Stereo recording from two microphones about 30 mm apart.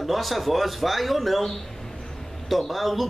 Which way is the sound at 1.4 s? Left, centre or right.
Centre.